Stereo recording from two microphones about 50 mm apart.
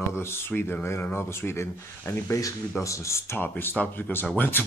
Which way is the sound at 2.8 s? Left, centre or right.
Left.